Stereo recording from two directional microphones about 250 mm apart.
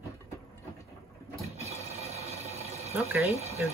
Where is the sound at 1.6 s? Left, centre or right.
Right.